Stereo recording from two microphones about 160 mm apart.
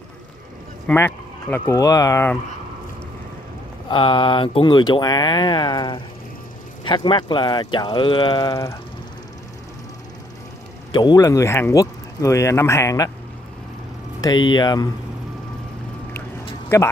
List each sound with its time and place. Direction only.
0.8 s speech: 15° left (ahead or behind)
3.9 s speech: 30° left (ahead or behind)
10.9 s speech: 25° left (ahead or behind)
14.2 s speech: 25° left (ahead or behind)
16.6 s speech: 20° left (ahead or behind)